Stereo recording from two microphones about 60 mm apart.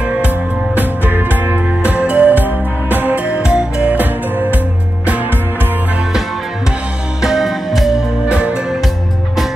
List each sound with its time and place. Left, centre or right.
0.7 s music: right
1.8 s music: right
3.3 s music: centre
3.9 s music: right
7.2 s music: centre
8.3 s music: right